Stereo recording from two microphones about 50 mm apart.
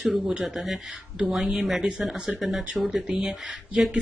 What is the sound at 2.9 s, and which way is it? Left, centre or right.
Speech, centre.